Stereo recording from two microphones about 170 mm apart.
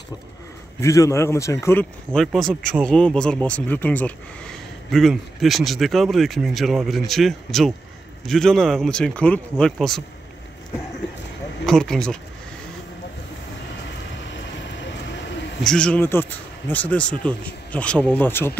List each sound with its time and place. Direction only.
0.7 s speech: 20° left (ahead or behind)
2.1 s speech: 5° left (ahead or behind)
11.6 s speech: 5° left (ahead or behind)
14.3 s vehicle: 90° left
15.6 s speech: 5° left (ahead or behind)